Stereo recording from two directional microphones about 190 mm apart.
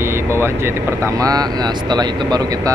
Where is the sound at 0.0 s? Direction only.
15° right (ahead or behind).